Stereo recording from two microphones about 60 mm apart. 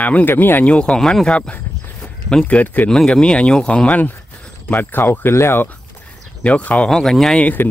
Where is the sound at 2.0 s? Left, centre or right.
Centre.